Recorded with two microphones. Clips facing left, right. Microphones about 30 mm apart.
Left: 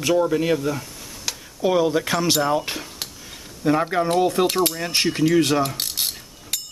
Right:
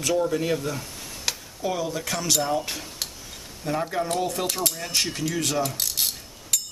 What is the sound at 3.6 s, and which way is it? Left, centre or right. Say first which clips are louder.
Speech: left 7 dB; left.